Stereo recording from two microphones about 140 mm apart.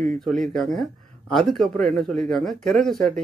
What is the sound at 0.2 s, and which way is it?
Speech, centre (ahead or behind).